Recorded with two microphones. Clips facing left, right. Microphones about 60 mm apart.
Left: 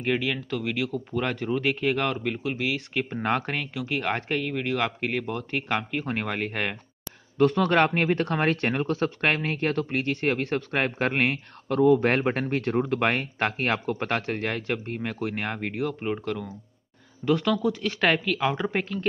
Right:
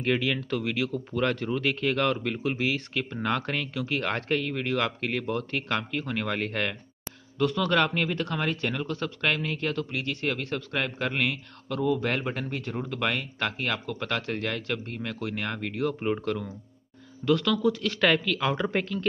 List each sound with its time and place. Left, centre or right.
0.0 s speech: centre
2.9 s speech: left
7.3 s speech: left
15.8 s speech: centre
17.2 s speech: centre